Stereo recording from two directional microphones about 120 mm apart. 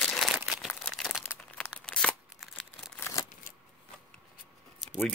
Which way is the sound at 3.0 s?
25° left (ahead or behind).